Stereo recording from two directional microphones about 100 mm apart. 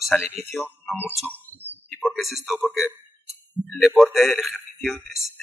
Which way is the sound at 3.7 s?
5° right (ahead or behind).